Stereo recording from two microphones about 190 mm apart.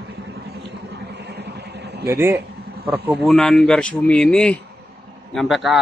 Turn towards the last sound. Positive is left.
turn(degrees=0)  # may be behind; listen again after turning